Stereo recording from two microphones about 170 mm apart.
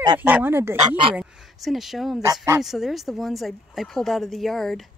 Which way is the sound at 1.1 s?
Centre (ahead or behind).